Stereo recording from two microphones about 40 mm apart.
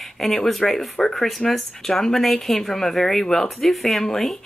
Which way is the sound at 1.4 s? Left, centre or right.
Left.